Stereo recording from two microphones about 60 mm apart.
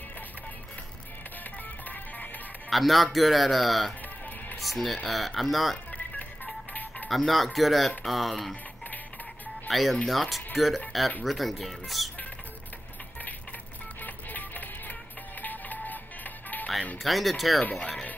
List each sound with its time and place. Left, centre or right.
1.4 s music: left
2.7 s speech: centre
5.9 s music: left
7.1 s speech: centre
9.7 s speech: centre
14.0 s music: left
15.4 s printer: left
16.4 s music: left
17.0 s speech: centre
17.6 s speech: left